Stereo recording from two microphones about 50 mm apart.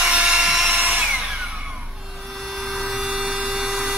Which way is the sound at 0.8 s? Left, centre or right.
Right.